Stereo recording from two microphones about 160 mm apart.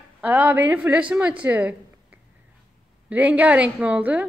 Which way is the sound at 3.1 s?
10° right (ahead or behind).